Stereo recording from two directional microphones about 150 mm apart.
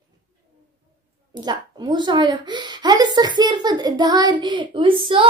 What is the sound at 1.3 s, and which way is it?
A woman's voice, 30° right (ahead or behind).